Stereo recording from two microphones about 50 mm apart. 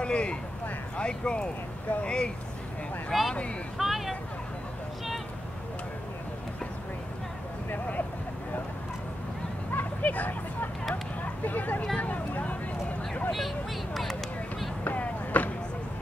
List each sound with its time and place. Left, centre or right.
0.0 s speech: left
3.1 s speech: centre
9.8 s a sound: left
11.4 s speech: left
12.0 s vehicle: left
14.9 s a sound: left